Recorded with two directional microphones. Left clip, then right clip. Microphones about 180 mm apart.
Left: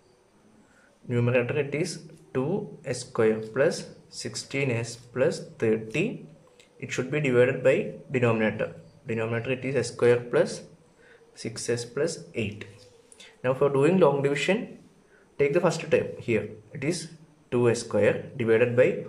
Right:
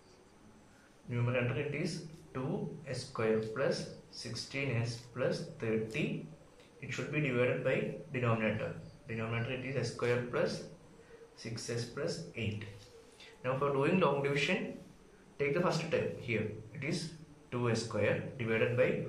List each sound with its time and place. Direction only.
1.0 s a man's voice: 55° left (ahead or behind)
17.5 s speech: 50° left (ahead or behind)